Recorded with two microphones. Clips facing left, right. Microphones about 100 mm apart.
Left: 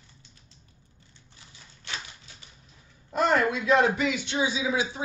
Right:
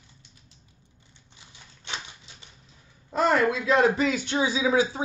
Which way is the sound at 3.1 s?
35° right (ahead or behind).